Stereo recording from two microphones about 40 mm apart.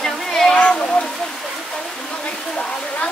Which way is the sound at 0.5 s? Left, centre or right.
Left.